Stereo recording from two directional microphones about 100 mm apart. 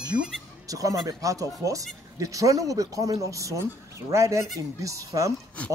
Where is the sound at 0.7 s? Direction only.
35° right (ahead or behind).